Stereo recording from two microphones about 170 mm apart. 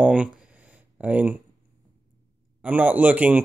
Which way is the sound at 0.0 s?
5° right (ahead or behind).